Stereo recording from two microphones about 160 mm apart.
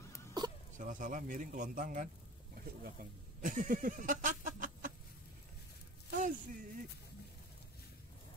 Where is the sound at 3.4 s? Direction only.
55° right (ahead or behind).